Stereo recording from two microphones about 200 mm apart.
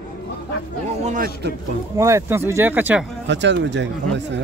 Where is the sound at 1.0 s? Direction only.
40° right (ahead or behind).